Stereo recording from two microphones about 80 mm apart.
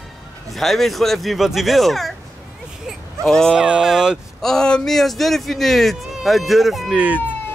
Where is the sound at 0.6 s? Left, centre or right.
Centre.